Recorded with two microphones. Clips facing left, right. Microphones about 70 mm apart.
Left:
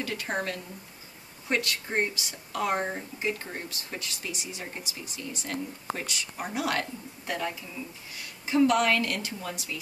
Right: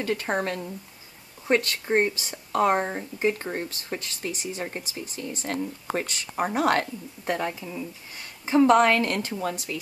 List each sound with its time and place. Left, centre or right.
0.0 s speech: right
2.8 s speech: right
3.2 s speech: right